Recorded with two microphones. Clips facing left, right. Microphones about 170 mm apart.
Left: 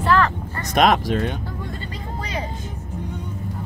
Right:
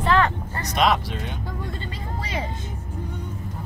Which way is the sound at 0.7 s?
50° left (ahead or behind).